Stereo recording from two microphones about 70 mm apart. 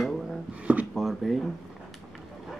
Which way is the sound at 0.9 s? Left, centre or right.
Centre.